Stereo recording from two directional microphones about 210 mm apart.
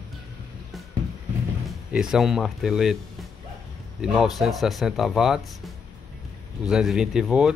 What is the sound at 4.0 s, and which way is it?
Speech, centre (ahead or behind).